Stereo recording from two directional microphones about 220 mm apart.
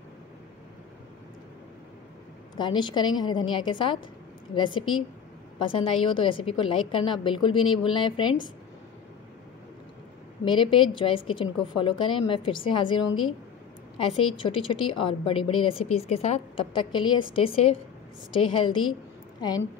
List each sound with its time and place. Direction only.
2.5 s a woman's voice: 20° left (ahead or behind)
10.4 s a woman's voice: 20° left (ahead or behind)